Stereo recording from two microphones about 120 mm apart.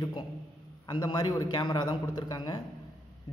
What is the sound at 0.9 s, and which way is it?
A man's voice, 35° left (ahead or behind).